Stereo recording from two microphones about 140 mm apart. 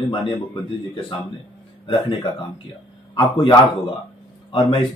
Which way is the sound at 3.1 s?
35° left (ahead or behind).